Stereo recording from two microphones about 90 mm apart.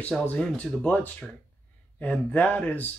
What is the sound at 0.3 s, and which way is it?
Speech, 10° left (ahead or behind).